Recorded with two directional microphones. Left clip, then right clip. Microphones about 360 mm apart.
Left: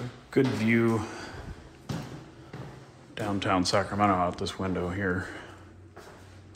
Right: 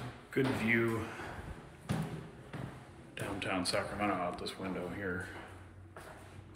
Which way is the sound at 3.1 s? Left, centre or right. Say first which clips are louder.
Left 9 dB; centre.